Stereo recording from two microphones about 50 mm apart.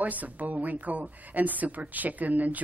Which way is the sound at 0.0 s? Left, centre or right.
Right.